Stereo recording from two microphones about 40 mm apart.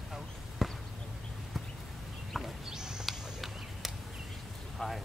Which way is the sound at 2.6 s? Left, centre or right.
Centre.